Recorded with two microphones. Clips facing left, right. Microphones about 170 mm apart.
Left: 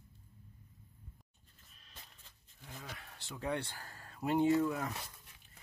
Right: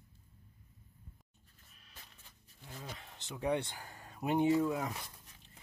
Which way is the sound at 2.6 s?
20° right (ahead or behind).